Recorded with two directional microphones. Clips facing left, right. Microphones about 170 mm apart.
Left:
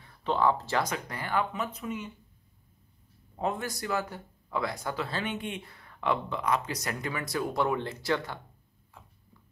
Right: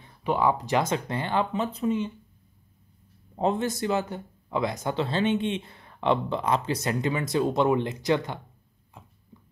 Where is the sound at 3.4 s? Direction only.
25° right (ahead or behind).